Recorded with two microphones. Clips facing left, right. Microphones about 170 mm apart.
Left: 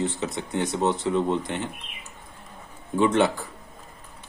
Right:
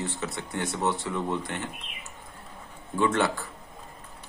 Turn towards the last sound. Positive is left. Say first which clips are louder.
# left 4 dB
turn(degrees=20)  # may be behind; listen again after turning